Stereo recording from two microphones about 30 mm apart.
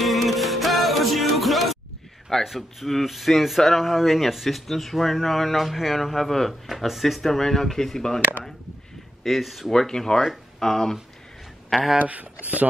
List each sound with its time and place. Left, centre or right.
0.0 s music: centre
2.4 s speech: centre
9.2 s speech: centre
9.7 s speech: centre
12.0 s speech: right